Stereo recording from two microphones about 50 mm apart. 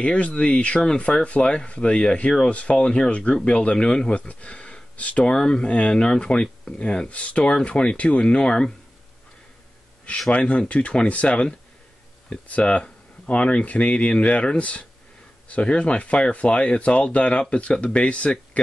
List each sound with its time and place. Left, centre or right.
0.0 s speech: left
10.3 s speech: left